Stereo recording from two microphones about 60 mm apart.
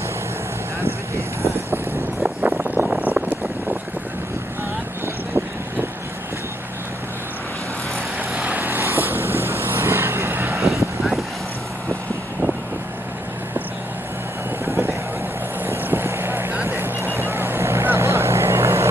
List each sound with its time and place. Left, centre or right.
2.2 s vehicle: right
2.6 s vehicle: right
2.9 s a sound: right
5.0 s vehicle: right
8.4 s vehicle: right
11.0 s vehicle: centre
14.6 s vehicle: right